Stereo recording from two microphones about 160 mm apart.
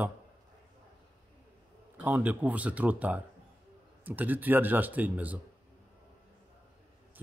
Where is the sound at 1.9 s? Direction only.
10° right (ahead or behind).